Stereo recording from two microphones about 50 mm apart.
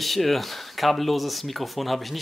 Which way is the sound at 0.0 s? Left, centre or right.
Centre.